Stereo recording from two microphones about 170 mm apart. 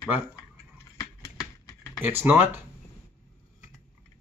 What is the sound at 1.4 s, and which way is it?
Typing, 15° left (ahead or behind).